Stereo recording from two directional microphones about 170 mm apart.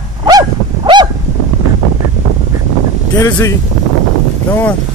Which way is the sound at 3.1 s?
20° left (ahead or behind).